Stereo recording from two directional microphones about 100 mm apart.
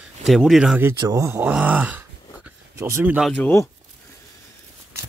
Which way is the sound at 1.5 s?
15° right (ahead or behind).